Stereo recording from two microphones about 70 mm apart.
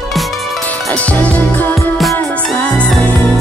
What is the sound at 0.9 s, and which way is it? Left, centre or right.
Music, centre.